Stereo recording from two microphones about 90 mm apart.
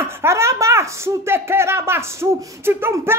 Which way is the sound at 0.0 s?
30° right (ahead or behind).